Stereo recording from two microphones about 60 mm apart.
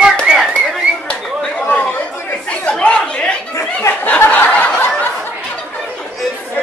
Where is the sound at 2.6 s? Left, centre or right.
Centre.